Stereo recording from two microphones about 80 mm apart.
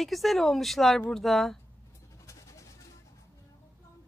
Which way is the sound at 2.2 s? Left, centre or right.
Left.